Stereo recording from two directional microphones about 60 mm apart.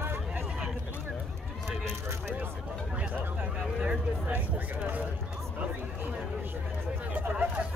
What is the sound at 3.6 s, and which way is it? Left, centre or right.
Speech, centre.